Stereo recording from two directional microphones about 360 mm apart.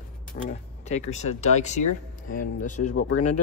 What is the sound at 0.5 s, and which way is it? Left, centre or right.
Speech, centre.